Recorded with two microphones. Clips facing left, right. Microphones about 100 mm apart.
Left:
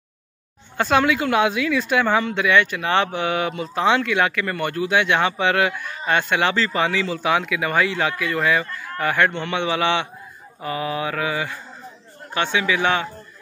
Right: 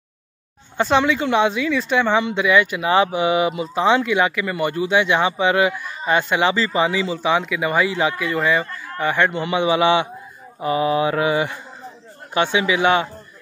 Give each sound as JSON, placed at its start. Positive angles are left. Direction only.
{"t": 0.7, "sound": "a man's voice", "side_deg": 0}
{"t": 10.6, "sound": "mantra", "side_deg": -20}
{"t": 12.4, "sound": "a man's voice", "side_deg": -15}